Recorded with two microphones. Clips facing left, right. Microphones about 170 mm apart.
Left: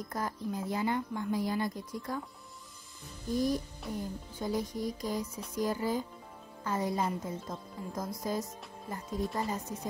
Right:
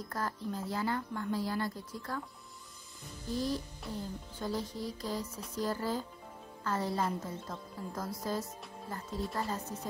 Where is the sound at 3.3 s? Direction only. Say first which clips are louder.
Left 4 dB; 15° left (ahead or behind).